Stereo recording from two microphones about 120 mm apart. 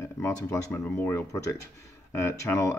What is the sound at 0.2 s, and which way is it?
Speech, 25° left (ahead or behind).